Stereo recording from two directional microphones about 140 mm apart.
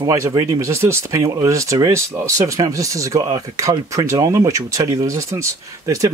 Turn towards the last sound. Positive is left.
turn(degrees=-20)  # may be behind; listen again after turning